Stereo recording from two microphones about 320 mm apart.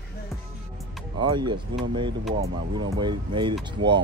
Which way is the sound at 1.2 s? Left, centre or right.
Centre.